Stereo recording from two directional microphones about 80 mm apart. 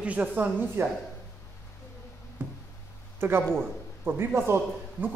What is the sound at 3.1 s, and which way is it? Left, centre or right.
A man's voice, right.